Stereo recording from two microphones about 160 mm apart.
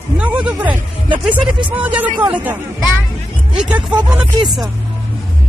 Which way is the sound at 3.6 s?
5° right (ahead or behind).